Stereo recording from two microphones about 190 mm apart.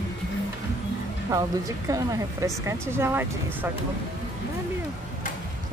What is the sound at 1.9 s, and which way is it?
Speech, 15° right (ahead or behind).